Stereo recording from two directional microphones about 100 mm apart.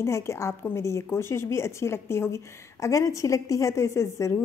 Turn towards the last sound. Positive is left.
turn(degrees=30)  # may be behind; listen again after turning